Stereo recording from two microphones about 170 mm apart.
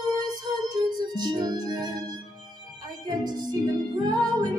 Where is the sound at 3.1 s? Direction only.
25° right (ahead or behind).